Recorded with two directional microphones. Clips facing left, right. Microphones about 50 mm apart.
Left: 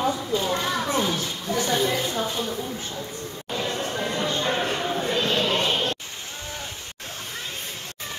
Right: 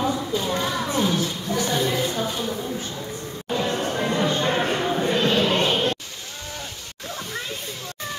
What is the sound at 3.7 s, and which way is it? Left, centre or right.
Music, right.